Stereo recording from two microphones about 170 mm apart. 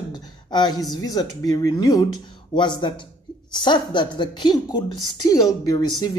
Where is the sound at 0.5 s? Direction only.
25° left (ahead or behind).